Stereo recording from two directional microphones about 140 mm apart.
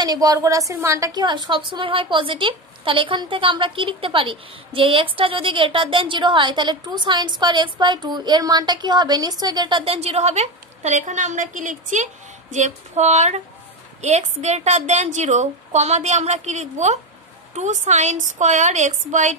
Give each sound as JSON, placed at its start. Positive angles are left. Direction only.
{"t": 0.0, "sound": "a woman's voice", "side_deg": -30}